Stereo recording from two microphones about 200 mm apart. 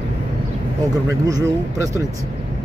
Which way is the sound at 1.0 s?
15° right (ahead or behind).